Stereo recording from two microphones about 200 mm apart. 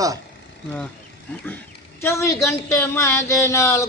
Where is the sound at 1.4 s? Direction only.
10° left (ahead or behind).